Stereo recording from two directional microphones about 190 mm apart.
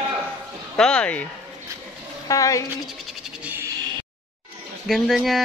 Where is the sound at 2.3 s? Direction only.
15° left (ahead or behind).